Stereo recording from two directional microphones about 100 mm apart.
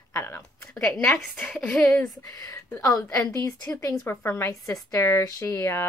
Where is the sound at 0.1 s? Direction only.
20° left (ahead or behind).